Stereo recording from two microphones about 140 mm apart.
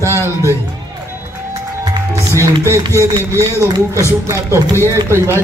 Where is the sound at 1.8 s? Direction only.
20° right (ahead or behind).